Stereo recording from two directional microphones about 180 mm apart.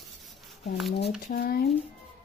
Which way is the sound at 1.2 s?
55° left (ahead or behind).